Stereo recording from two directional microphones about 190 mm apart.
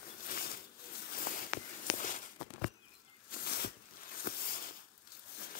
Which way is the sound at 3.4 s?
60° left (ahead or behind).